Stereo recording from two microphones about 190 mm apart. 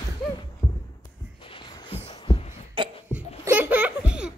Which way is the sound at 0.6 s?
20° left (ahead or behind).